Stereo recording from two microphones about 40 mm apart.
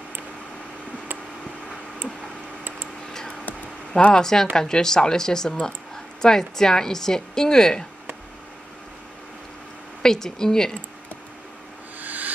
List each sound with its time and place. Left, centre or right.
4.1 s speech: centre
10.0 s speech: centre
12.0 s a sound: right